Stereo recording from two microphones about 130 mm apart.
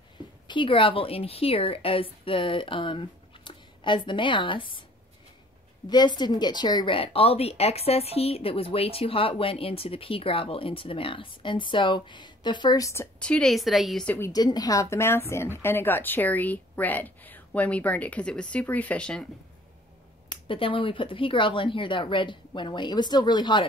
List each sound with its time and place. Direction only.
0.5 s a woman's voice: 40° left (ahead or behind)
5.9 s a woman's voice: 35° left (ahead or behind)
13.2 s a woman's voice: 5° left (ahead or behind)
14.0 s speech: 15° left (ahead or behind)
14.3 s speech: 30° left (ahead or behind); by 19.2 s 10° left (ahead or behind)
20.2 s speech: 40° left (ahead or behind)